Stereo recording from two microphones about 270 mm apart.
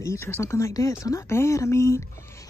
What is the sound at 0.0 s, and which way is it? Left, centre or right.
Speech, centre.